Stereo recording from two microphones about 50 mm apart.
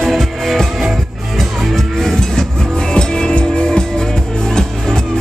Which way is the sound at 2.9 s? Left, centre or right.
Centre.